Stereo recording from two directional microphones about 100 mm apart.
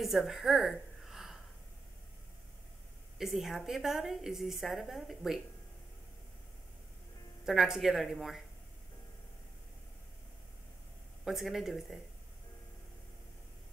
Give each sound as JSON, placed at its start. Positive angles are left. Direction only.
{"t": 0.0, "sound": "a sound", "side_deg": 0}
{"t": 3.2, "sound": "a woman's voice", "side_deg": 0}
{"t": 7.4, "sound": "a woman's voice", "side_deg": -5}
{"t": 11.2, "sound": "a woman's voice", "side_deg": 0}